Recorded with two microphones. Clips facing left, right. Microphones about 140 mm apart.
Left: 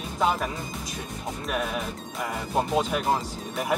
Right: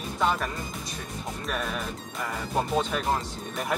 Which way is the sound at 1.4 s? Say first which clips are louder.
Left 3 dB; 5° left (ahead or behind).